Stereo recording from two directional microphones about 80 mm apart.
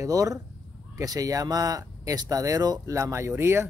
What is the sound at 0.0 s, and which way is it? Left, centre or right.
Speech, right.